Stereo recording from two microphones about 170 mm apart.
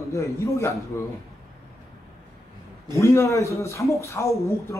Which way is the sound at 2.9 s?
15° left (ahead or behind).